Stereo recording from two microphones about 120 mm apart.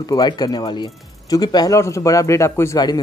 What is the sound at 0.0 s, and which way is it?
Speech, 35° left (ahead or behind).